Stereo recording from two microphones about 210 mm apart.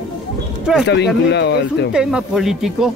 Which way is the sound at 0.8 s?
55° left (ahead or behind).